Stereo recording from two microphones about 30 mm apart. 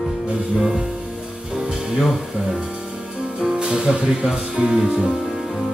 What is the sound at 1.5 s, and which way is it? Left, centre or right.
Music, right.